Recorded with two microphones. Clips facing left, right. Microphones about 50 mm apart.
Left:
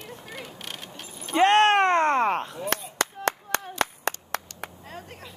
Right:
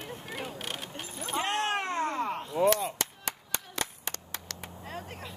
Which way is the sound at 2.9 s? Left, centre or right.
Left.